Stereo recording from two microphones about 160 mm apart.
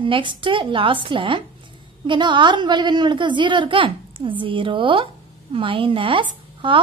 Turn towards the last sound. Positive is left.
turn(degrees=-30)  # may be behind; listen again after turning